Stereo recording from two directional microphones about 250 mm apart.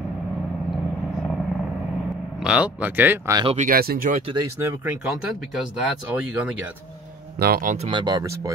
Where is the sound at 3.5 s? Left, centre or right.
Right; by 4.8 s centre.